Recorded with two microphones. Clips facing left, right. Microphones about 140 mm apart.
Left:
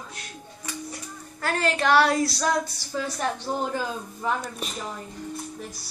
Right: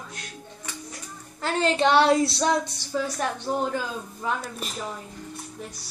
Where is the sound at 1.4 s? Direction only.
25° right (ahead or behind).